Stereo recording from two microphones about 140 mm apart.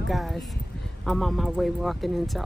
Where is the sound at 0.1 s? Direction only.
Centre (ahead or behind).